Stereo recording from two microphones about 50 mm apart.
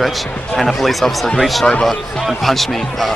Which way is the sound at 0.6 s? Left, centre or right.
Centre.